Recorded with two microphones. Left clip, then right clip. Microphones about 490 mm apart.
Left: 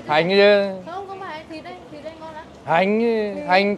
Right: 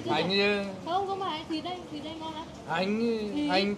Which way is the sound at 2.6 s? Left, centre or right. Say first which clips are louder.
Left 12 dB; left.